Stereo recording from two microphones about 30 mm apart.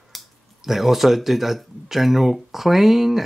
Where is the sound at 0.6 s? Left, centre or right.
Centre.